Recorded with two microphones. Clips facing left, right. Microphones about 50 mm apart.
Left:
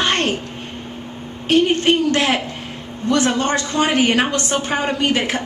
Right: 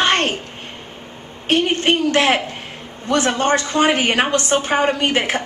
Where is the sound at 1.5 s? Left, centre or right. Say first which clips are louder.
Left 2 dB; right.